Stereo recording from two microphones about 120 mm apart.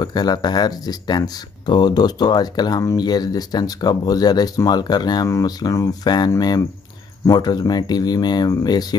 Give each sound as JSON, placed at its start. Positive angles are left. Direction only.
{"t": 0.0, "sound": "speech", "side_deg": 35}